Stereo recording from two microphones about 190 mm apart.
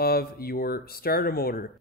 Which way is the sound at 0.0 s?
55° left (ahead or behind).